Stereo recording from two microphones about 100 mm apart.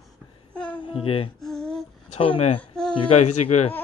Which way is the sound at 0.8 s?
65° left (ahead or behind).